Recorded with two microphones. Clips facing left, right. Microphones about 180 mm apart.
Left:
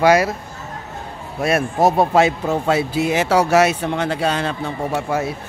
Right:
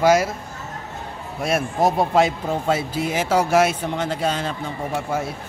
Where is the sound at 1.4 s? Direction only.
65° left (ahead or behind).